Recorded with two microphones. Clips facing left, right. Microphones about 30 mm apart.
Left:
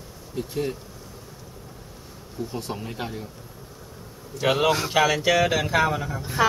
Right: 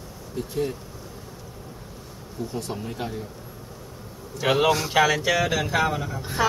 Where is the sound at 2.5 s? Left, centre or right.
Centre.